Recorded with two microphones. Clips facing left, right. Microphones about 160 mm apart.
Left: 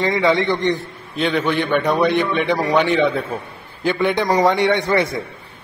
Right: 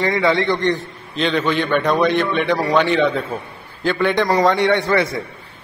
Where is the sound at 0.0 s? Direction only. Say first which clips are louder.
Even; 20° left (ahead or behind).